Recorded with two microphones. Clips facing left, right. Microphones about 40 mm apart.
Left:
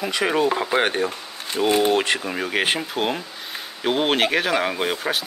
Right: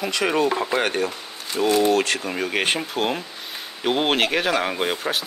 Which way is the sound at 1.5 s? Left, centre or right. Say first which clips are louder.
Even; left.